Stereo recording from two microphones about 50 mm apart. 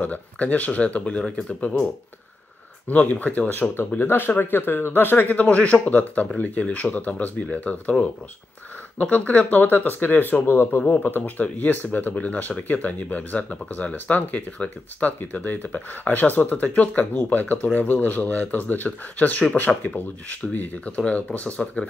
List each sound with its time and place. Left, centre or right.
0.0 s speech: left
2.9 s speech: left
8.9 s speech: left
10.4 s speech: left
10.8 s speech: left
20.5 s speech: left
20.9 s speech: left